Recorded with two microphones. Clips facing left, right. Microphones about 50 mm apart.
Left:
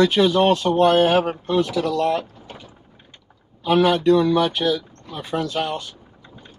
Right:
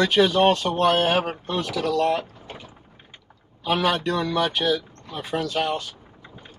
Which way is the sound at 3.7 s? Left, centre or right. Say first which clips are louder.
Left 6 dB; centre.